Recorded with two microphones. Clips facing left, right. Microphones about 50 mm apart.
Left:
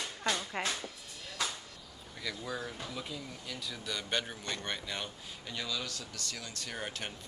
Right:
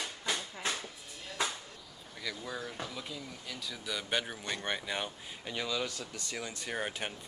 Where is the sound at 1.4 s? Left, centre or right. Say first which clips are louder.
Right 2 dB; right.